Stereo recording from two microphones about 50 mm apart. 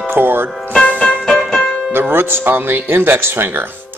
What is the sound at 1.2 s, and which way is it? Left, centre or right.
Music, centre.